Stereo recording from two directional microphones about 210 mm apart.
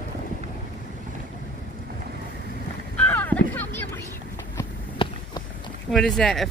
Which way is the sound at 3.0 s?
5° left (ahead or behind).